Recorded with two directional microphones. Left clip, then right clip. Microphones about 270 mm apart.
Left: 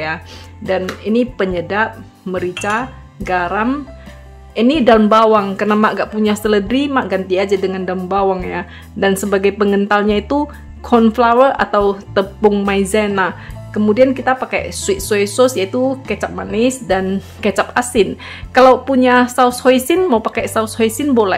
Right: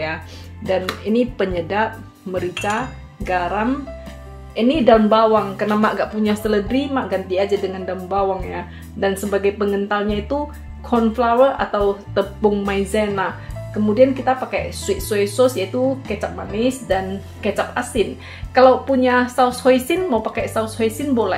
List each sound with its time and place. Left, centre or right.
0.7 s speech: centre; by 21.4 s left